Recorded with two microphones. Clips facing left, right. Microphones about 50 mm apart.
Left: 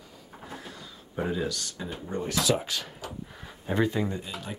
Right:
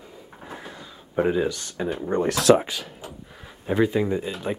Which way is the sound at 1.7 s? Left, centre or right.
Right.